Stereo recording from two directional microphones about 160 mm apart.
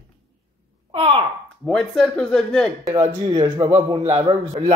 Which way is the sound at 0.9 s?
35° right (ahead or behind).